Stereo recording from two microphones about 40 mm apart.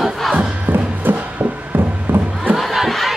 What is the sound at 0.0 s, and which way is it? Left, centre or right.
Crowd, centre.